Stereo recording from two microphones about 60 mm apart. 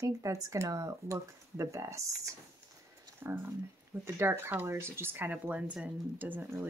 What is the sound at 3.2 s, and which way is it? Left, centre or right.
Speech, right.